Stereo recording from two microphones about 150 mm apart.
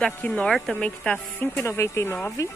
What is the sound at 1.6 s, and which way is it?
Speech, 20° left (ahead or behind).